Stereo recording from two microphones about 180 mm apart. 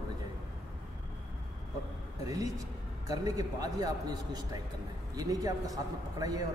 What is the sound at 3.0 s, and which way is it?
A man's voice, 20° right (ahead or behind).